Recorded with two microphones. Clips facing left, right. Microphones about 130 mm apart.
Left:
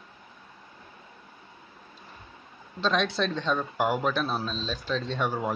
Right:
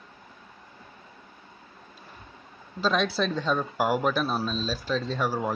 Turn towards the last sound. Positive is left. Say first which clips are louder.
# right 1 dB
turn(degrees=0)  # may be behind; listen again after turning